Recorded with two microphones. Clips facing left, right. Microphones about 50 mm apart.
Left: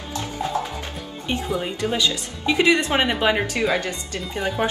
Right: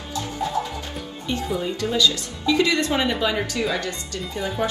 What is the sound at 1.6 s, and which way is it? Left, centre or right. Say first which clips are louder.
Speech: right 1 dB; left.